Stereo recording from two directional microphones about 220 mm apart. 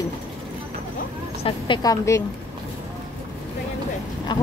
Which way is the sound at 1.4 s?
20° left (ahead or behind).